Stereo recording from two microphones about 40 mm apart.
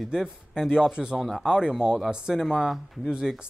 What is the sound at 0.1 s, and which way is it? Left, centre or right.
Speech, centre.